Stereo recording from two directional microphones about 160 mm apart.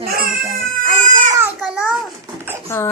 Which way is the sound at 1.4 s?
10° right (ahead or behind).